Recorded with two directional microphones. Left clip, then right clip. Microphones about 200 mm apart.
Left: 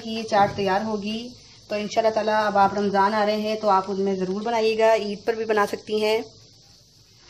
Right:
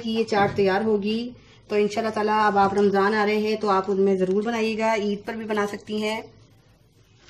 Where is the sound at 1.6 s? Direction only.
30° left (ahead or behind); by 6.2 s 45° left (ahead or behind).